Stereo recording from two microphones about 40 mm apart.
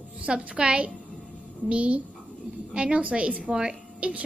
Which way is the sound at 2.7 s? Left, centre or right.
Right.